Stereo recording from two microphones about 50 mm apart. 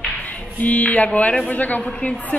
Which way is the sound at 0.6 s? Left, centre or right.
Left.